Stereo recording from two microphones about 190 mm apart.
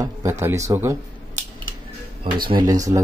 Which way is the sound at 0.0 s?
15° right (ahead or behind).